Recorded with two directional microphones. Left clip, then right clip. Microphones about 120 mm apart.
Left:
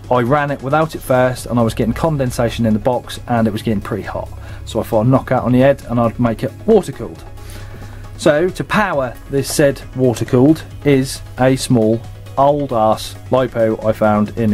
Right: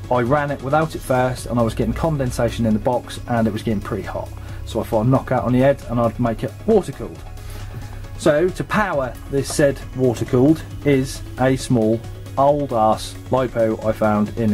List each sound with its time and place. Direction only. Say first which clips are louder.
0.1 s speech: left 4 dB; 25° left (ahead or behind)
8.2 s speech: left 3 dB; 25° left (ahead or behind)